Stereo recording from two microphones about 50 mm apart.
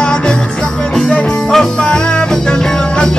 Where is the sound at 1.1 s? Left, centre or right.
Centre.